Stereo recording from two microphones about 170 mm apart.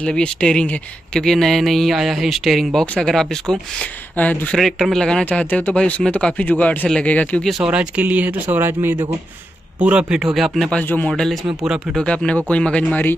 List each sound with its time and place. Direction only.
0.0 s speech: 5° left (ahead or behind)